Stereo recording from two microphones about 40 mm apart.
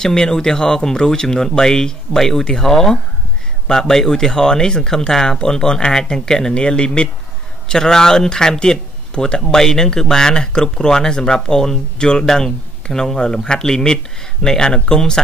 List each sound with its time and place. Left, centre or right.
0.0 s speech: centre